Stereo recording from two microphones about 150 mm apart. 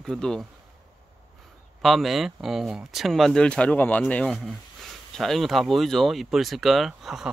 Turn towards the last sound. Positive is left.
turn(degrees=0)  # may be behind; listen again after turning